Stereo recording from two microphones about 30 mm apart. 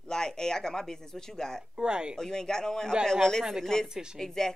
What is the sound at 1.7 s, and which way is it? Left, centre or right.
Speech, right.